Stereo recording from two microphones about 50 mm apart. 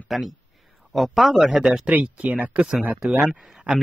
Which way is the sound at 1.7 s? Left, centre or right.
Right.